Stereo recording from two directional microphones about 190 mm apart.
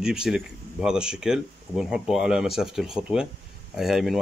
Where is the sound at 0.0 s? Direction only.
5° right (ahead or behind).